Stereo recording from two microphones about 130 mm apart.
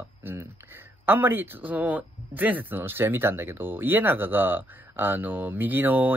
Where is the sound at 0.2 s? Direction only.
15° right (ahead or behind).